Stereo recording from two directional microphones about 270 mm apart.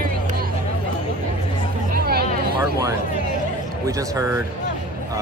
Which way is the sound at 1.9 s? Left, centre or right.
Right.